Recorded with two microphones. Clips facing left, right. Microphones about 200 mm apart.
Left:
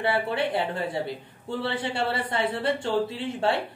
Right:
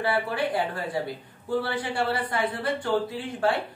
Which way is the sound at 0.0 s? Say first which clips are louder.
Left 1 dB; 25° left (ahead or behind).